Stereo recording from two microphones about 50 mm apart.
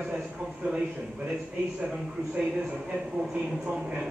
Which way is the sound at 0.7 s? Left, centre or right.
Right.